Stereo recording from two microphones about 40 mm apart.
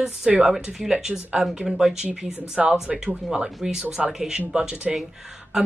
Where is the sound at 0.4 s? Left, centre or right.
Centre.